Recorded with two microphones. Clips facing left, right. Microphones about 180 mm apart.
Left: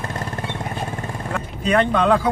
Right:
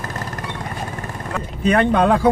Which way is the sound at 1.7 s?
40° right (ahead or behind).